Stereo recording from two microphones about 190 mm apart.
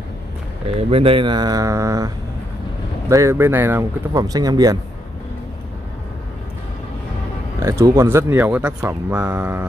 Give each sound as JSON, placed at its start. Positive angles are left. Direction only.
{"t": 0.7, "sound": "speech", "side_deg": -30}
{"t": 7.6, "sound": "speech", "side_deg": -15}